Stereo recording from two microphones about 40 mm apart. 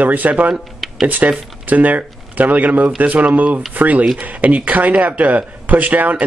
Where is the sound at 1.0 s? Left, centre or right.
Right.